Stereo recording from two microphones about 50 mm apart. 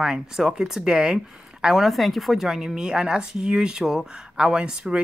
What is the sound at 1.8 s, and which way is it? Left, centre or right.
Speech, centre.